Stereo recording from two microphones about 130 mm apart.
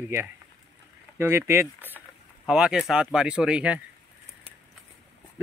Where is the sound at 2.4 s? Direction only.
5° right (ahead or behind).